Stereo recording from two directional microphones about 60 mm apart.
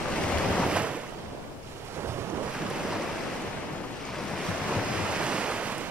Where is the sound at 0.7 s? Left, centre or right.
Centre.